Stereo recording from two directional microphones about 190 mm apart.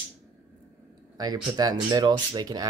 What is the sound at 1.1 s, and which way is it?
Speech, 20° right (ahead or behind).